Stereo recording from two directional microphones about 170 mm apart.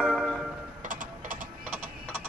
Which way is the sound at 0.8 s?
50° right (ahead or behind).